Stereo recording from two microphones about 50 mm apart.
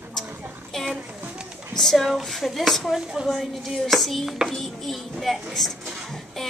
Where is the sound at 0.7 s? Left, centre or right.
Centre.